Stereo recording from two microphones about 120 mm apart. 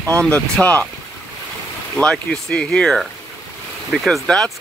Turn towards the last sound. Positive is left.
turn(degrees=5)  # may be behind; listen again after turning